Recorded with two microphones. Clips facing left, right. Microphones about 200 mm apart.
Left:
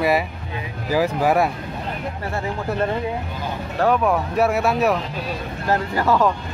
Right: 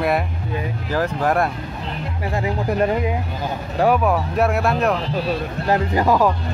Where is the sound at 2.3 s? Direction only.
15° right (ahead or behind); by 5.0 s 5° left (ahead or behind).